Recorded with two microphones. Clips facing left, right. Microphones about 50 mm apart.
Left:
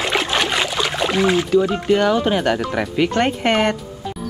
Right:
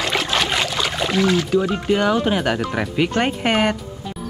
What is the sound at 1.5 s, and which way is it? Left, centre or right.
Speech, centre.